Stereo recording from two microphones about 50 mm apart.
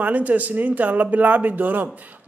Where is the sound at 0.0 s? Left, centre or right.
Right.